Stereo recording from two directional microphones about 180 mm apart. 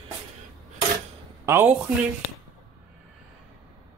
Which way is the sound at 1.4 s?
15° right (ahead or behind).